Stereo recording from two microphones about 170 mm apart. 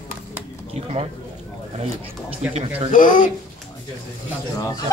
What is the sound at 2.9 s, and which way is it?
Speech, 50° left (ahead or behind).